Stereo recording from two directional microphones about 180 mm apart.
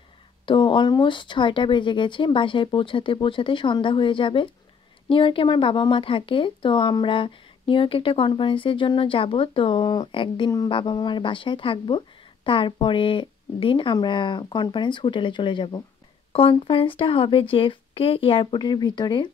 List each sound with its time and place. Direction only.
0.5 s speech: 25° left (ahead or behind)